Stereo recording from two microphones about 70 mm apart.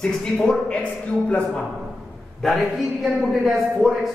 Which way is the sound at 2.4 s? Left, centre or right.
Centre.